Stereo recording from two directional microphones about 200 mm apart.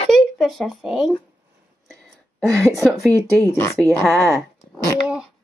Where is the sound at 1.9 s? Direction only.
Centre (ahead or behind).